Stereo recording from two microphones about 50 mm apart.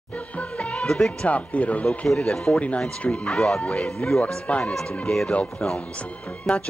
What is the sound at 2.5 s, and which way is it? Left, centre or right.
Speech, left.